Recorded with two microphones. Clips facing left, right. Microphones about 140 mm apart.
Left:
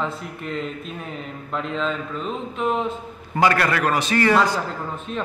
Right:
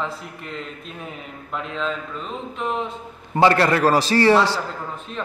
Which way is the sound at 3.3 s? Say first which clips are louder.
Right 3 dB; 30° right (ahead or behind).